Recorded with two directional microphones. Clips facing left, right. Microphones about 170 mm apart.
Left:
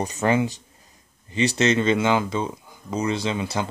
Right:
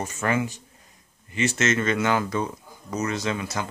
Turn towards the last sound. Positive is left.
turn(degrees=25)  # may be behind; listen again after turning